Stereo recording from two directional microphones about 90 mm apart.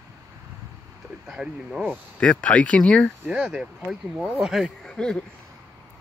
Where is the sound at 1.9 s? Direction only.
10° left (ahead or behind).